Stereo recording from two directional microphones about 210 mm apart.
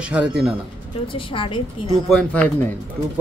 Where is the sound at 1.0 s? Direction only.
25° left (ahead or behind).